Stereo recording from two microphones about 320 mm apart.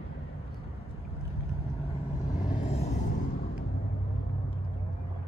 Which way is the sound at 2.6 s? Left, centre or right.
Left.